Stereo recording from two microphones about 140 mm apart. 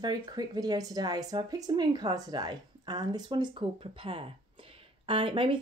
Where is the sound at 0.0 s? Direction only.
30° right (ahead or behind).